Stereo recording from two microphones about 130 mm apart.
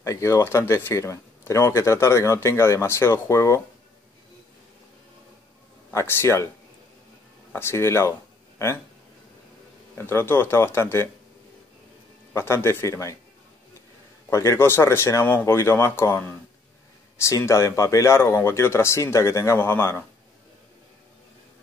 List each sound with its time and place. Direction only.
0.0 s speech: 20° left (ahead or behind)
5.9 s speech: 20° left (ahead or behind)
7.5 s speech: 20° left (ahead or behind)
9.9 s speech: 20° left (ahead or behind)
12.4 s speech: 20° left (ahead or behind)
14.3 s speech: 20° left (ahead or behind)